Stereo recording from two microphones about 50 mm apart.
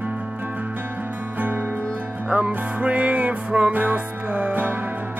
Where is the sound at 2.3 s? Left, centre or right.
Right.